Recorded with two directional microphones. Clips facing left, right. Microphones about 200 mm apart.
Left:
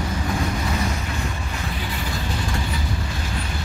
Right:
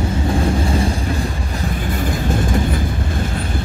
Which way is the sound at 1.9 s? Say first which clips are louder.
Right 8 dB; 50° right (ahead or behind).